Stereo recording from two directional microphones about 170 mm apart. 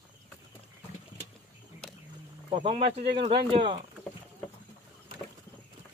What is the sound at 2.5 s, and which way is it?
Speech, 30° right (ahead or behind).